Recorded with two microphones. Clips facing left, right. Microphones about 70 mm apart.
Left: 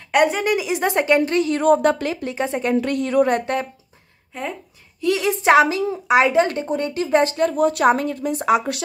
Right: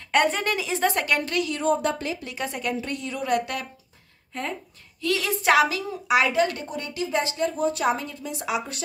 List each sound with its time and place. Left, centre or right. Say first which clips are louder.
0.1 s a woman's voice: left 5 dB; centre; by 1.5 s left
1.5 s a woman's voice: left 8 dB; left
2.2 s speech: left 8 dB; left
2.8 s a woman's voice: left 12 dB; left
3.3 s a woman's voice: left 5 dB; left
4.3 s speech: left 2 dB; centre
5.0 s a woman's voice: left 6 dB; left